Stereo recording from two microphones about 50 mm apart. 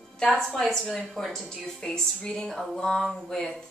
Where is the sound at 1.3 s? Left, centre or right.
Centre.